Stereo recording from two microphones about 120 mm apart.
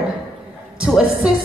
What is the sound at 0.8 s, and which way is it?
Speech, 5° right (ahead or behind).